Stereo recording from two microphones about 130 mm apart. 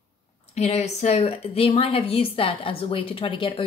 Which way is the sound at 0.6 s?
55° left (ahead or behind).